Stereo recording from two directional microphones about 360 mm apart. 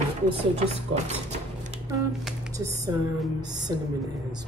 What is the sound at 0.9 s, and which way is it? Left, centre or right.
Speech, centre.